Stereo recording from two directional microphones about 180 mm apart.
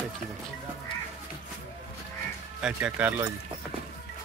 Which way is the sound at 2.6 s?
5° right (ahead or behind).